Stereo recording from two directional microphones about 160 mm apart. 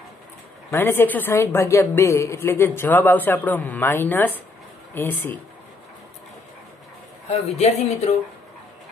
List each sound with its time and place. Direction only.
0.7 s a woman's voice: 15° left (ahead or behind)
7.2 s speech: 45° left (ahead or behind)